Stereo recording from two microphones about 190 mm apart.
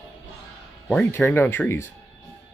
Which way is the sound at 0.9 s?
10° left (ahead or behind).